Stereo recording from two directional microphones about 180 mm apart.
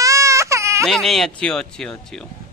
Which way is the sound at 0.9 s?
Centre (ahead or behind).